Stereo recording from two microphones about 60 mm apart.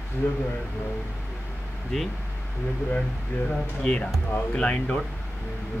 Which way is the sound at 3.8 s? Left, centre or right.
Left.